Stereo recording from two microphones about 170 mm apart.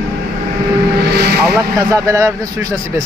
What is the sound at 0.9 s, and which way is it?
Vehicle, 75° right (ahead or behind).